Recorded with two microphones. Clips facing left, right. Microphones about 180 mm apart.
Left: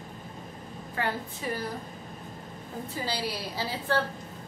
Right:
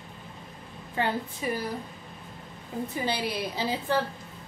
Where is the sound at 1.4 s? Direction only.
15° right (ahead or behind).